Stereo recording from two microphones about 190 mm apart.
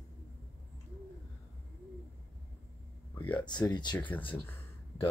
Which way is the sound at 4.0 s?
10° left (ahead or behind).